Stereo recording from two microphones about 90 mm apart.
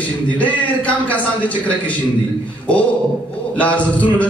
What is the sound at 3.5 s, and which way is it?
Speech, 15° left (ahead or behind).